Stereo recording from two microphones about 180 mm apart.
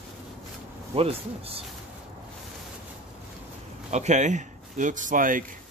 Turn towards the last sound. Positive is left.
turn(degrees=-50)  # may be behind; listen again after turning